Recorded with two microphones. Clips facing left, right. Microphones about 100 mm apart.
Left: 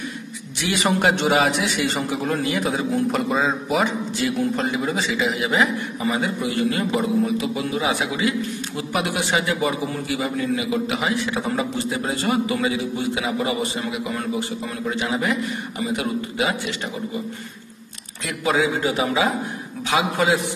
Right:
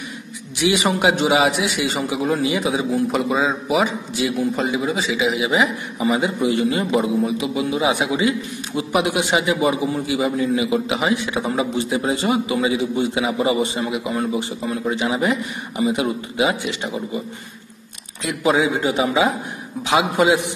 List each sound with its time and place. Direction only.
0.6 s a man's voice: 15° right (ahead or behind)
0.8 s a man's voice: 5° right (ahead or behind)
6.1 s a man's voice: 20° right (ahead or behind)
18.2 s a man's voice: 25° right (ahead or behind)